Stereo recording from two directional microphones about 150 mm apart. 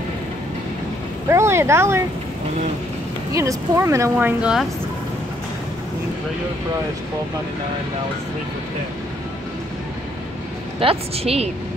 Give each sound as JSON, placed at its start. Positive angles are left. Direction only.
{"t": 1.3, "sound": "speech", "side_deg": -20}
{"t": 3.3, "sound": "speech", "side_deg": -20}
{"t": 4.4, "sound": "speech", "side_deg": -5}
{"t": 10.8, "sound": "a woman's voice", "side_deg": -40}